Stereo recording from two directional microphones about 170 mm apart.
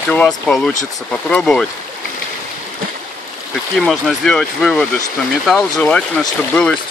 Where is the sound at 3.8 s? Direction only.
5° left (ahead or behind).